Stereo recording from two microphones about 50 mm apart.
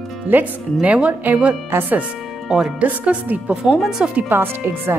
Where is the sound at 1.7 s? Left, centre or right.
Right.